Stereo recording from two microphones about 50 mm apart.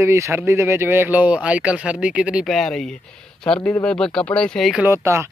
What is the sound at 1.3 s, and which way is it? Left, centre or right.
Speech, right.